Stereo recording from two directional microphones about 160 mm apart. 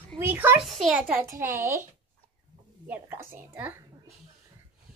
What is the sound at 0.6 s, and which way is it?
A child's voice, centre (ahead or behind).